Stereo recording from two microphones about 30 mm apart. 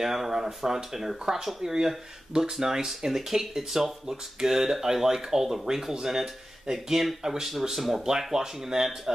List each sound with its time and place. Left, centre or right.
0.0 s speech: centre
8.0 s speech: centre